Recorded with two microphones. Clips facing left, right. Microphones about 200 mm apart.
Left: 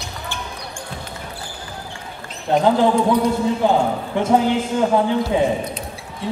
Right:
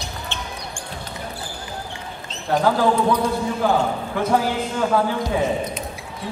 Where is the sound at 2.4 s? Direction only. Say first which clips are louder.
Left 3 dB; 20° left (ahead or behind).